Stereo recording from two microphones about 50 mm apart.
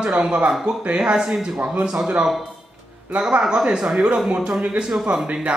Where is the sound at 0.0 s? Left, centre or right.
Centre.